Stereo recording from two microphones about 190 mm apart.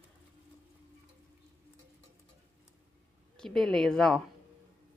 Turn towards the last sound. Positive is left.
turn(degrees=0)  # may be behind; listen again after turning